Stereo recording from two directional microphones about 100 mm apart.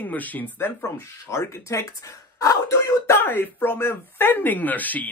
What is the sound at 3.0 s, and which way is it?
Speech, 25° left (ahead or behind).